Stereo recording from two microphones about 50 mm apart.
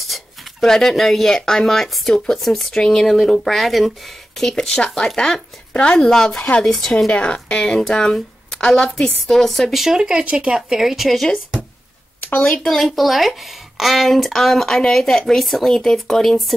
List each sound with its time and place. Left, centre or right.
0.0 s a sound: centre
0.7 s speech: centre
7.1 s speech: centre
9.8 s speech: centre
12.6 s speech: centre